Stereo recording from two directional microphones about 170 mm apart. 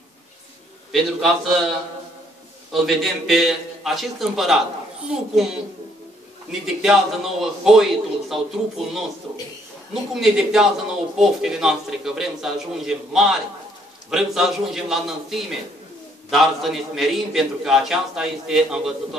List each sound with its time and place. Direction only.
0.9 s a man's voice: centre (ahead or behind)
2.7 s a man's voice: centre (ahead or behind)
6.6 s a man's voice: 5° right (ahead or behind)
10.2 s a man's voice: 5° right (ahead or behind)